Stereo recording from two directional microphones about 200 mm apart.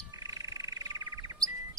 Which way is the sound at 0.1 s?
15° right (ahead or behind).